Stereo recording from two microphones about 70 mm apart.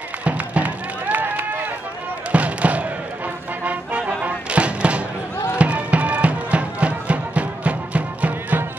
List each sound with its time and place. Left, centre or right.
0.2 s run: right
2.3 s fireworks: right
3.6 s music: centre